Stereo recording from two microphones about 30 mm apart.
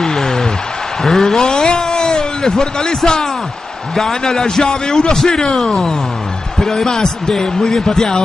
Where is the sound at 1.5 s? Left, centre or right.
Left.